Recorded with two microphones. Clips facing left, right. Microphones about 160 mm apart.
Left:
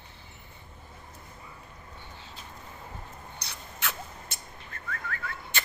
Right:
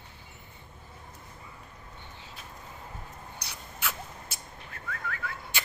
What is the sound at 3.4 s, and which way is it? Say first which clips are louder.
Bird: even; 10° right (ahead or behind).